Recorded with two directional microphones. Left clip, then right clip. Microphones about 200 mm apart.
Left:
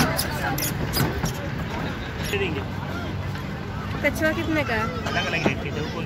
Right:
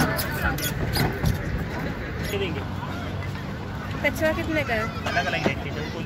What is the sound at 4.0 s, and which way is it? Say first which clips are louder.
Speech: left 1 dB; 50° left (ahead or behind).